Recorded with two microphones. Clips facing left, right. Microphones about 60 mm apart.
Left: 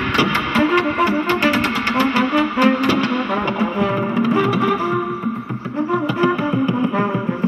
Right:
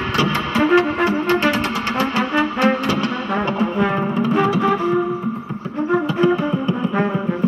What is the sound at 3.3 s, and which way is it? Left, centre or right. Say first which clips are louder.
Brass instrument: even; right.